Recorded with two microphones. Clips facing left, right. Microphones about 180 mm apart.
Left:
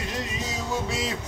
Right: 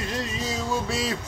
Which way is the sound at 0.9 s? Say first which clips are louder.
Right 2 dB; 20° left (ahead or behind).